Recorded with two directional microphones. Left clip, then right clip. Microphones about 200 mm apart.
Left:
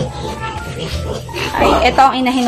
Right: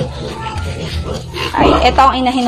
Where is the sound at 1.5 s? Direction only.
5° right (ahead or behind).